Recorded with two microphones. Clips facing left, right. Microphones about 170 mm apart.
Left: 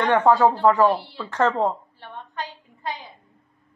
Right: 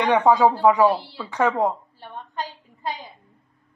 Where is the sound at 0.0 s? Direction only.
15° right (ahead or behind).